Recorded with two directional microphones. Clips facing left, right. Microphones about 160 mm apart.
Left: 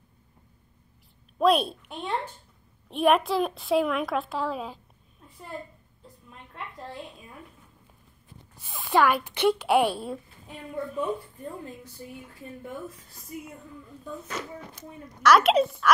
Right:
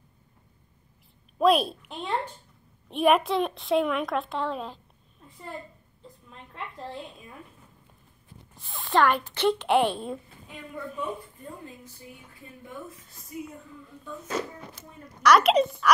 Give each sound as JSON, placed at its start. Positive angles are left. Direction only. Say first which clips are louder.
{"t": 1.4, "sound": "a woman's voice", "louder": "right 1 dB", "side_deg": 0}
{"t": 8.5, "sound": "a woman's voice", "louder": "left 1 dB", "side_deg": 10}
{"t": 14.4, "sound": "a woman's voice", "louder": "right 8 dB", "side_deg": -45}
{"t": 15.2, "sound": "a woman's voice", "louder": "even", "side_deg": 0}